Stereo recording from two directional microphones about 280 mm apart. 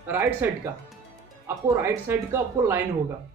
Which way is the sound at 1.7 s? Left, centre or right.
Centre.